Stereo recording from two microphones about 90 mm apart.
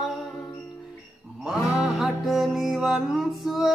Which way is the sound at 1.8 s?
Centre (ahead or behind).